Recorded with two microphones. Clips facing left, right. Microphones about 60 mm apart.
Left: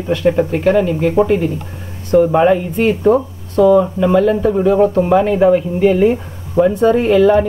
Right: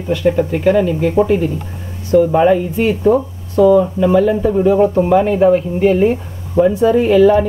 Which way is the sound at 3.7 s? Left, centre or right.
Centre.